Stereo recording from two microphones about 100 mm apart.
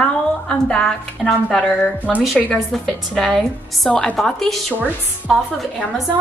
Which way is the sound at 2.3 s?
15° left (ahead or behind).